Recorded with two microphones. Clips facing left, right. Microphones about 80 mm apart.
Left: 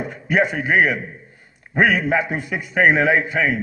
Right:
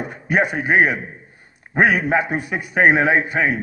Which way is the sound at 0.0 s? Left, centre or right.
Right.